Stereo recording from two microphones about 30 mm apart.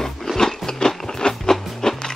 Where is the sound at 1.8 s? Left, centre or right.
Left.